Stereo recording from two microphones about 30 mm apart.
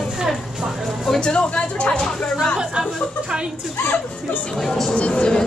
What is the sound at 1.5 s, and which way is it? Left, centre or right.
Speech, left.